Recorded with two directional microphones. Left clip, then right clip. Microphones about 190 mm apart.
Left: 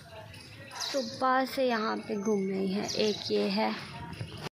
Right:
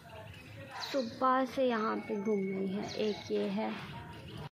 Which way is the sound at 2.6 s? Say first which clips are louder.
Left 5 dB; 15° left (ahead or behind).